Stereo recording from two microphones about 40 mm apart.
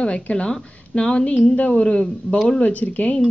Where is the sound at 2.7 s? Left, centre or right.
Left.